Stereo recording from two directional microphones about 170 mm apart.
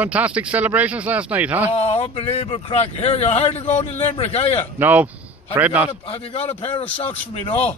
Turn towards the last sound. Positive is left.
turn(degrees=40)  # may be behind; listen again after turning